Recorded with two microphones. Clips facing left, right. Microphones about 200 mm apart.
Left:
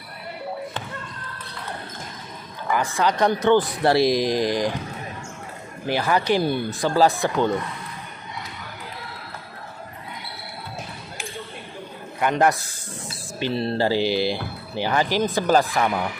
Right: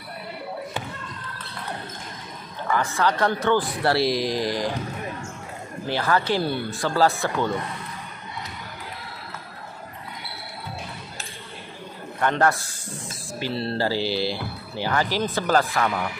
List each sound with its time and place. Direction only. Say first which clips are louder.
2.7 s speech: left 1 dB; 15° left (ahead or behind)
5.9 s speech: left 2 dB; 15° left (ahead or behind)
12.2 s speech: left 2 dB; 15° left (ahead or behind)